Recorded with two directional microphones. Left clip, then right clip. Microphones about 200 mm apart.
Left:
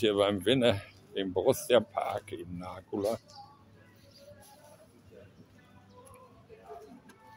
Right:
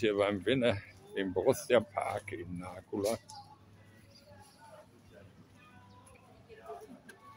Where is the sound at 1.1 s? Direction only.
10° left (ahead or behind).